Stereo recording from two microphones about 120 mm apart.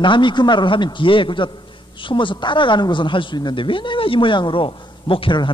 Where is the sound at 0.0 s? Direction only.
40° left (ahead or behind).